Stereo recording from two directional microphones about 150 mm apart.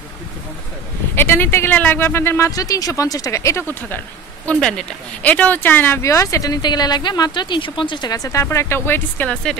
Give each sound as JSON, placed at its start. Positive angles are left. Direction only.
{"t": 1.1, "sound": "speech", "side_deg": 15}
{"t": 4.5, "sound": "speech", "side_deg": 5}